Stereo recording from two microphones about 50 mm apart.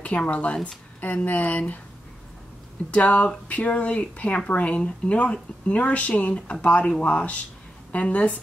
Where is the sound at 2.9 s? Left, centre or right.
Left.